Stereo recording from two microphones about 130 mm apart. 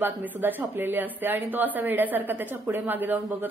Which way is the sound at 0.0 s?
15° right (ahead or behind).